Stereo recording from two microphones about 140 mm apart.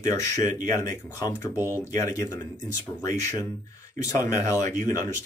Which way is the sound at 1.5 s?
15° right (ahead or behind).